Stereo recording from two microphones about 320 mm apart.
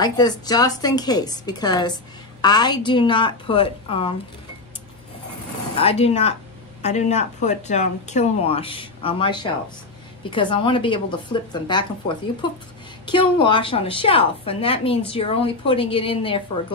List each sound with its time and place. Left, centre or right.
0.0 s speech: centre
5.8 s speech: centre